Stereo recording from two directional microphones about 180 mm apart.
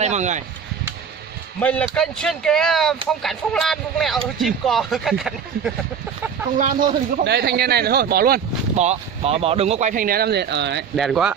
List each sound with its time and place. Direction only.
0.0 s speech: 40° right (ahead or behind)
1.6 s speech: 5° left (ahead or behind)
6.6 s speech: 50° right (ahead or behind)
7.2 s speech: 65° right (ahead or behind)
8.7 s speech: 35° right (ahead or behind); by 10.8 s 75° right (ahead or behind)
11.0 s speech: centre (ahead or behind)